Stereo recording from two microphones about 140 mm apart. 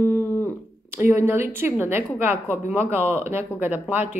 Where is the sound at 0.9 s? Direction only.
15° right (ahead or behind).